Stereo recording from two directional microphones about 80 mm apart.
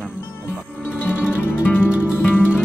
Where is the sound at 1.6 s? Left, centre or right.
Left.